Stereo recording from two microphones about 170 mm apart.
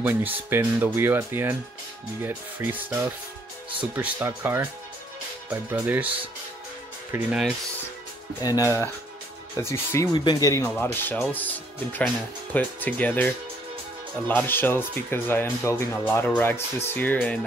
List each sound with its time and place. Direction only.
0.0 s speech: 10° right (ahead or behind)
8.4 s speech: 20° left (ahead or behind)